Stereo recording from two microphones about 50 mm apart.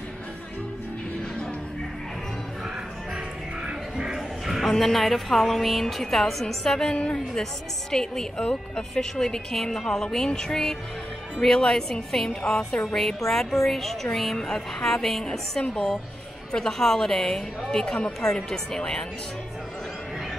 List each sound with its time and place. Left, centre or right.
3.9 s music: centre
4.7 s a woman's voice: centre
12.4 s music: left
12.8 s a woman's voice: centre